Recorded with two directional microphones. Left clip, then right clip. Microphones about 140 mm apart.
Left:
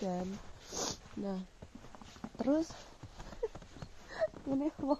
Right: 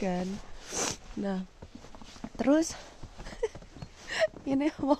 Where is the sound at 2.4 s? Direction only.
20° right (ahead or behind).